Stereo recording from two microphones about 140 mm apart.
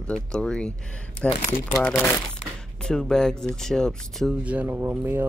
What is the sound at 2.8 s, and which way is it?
Speech, 5° left (ahead or behind).